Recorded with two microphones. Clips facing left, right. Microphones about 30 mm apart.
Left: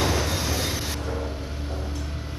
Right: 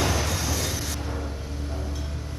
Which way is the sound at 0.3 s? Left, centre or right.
Left.